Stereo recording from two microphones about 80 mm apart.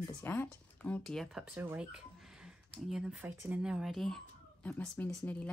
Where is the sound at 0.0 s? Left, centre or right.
Left.